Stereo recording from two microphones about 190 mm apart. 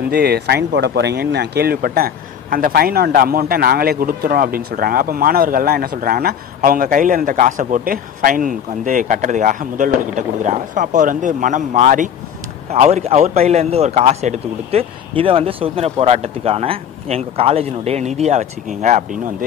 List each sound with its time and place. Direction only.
0.1 s a man's voice: 55° right (ahead or behind)